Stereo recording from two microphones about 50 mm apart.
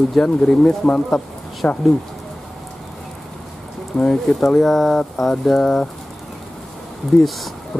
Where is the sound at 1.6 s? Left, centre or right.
Left.